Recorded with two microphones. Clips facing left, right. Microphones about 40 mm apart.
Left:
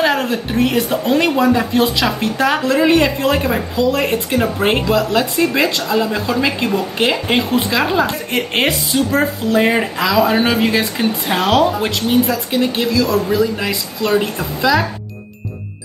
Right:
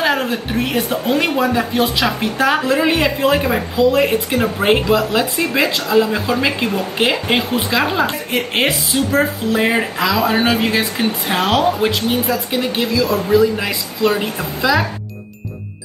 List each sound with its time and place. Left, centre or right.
0.0 s a woman's voice: centre
5.7 s speech: centre
5.9 s a woman's voice: centre